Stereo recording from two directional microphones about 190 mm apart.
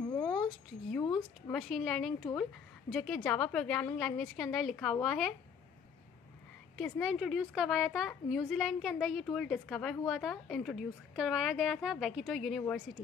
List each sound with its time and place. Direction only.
0.1 s a sound: 20° left (ahead or behind)
1.1 s a woman's voice: centre (ahead or behind)
6.8 s a woman's voice: 5° right (ahead or behind)